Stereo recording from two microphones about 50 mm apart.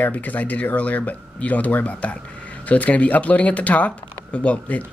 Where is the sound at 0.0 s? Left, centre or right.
Left.